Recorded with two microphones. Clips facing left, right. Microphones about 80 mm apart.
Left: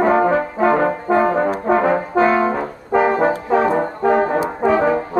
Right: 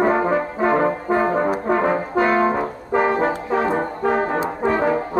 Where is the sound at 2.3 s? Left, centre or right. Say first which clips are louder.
Even; centre.